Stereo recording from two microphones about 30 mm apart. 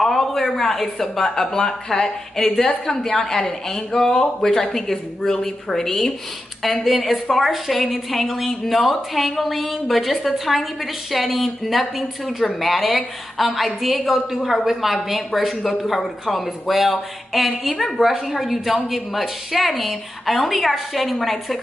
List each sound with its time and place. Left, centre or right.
0.0 s a woman's voice: centre
18.0 s a woman's voice: centre